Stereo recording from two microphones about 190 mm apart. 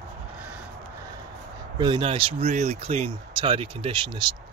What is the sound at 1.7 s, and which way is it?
Speech, 25° right (ahead or behind).